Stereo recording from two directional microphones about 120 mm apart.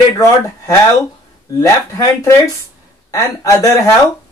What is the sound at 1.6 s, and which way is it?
Speech, 25° left (ahead or behind).